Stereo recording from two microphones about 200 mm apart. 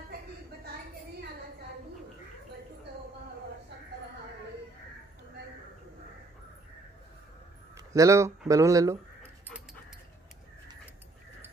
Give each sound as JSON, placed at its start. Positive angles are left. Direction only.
{"t": 7.9, "sound": "speech", "side_deg": -15}